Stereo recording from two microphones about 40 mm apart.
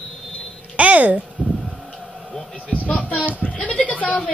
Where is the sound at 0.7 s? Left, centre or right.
Right.